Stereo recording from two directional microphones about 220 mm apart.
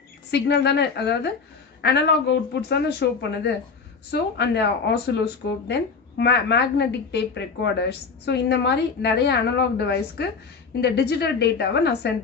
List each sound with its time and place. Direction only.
0.3 s speech: 50° left (ahead or behind)
2.7 s speech: 50° left (ahead or behind)